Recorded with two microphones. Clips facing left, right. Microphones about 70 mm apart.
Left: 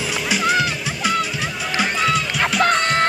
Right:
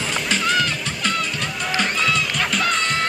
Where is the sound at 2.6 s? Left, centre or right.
Left.